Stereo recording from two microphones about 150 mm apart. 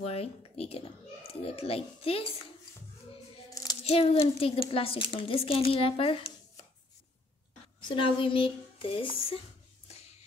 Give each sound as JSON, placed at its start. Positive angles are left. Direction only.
{"t": 0.0, "sound": "a child's voice", "side_deg": 40}
{"t": 3.8, "sound": "a child's voice", "side_deg": 40}
{"t": 7.9, "sound": "a child's voice", "side_deg": 35}